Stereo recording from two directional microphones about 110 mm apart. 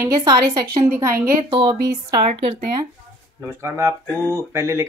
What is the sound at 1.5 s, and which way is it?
Speech, 45° right (ahead or behind).